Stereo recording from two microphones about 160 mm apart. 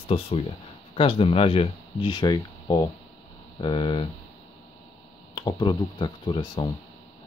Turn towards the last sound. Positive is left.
turn(degrees=30)  # may be behind; listen again after turning